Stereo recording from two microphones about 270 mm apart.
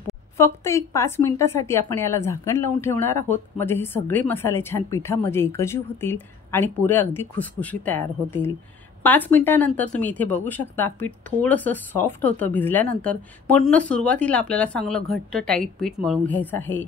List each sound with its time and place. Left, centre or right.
0.4 s a woman's voice: centre